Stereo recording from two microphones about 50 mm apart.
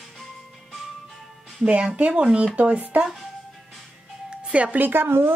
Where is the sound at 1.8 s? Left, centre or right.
Right.